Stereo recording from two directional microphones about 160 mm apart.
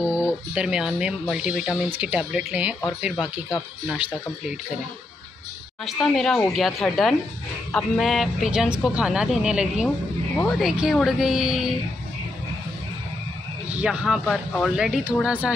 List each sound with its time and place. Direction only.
0.6 s speech: 5° right (ahead or behind)
5.9 s speech: centre (ahead or behind)
13.7 s speech: 5° right (ahead or behind)